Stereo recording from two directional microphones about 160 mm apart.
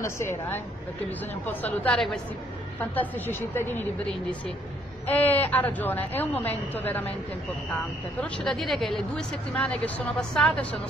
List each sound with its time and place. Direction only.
0.0 s a woman's voice: 15° left (ahead or behind)
8.2 s speech: centre (ahead or behind)